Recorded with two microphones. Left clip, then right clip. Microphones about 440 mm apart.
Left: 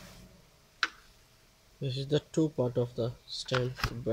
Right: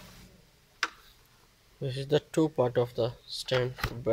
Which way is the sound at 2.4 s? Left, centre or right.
Right.